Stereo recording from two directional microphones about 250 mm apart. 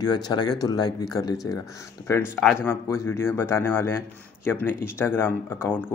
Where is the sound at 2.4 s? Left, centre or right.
Centre.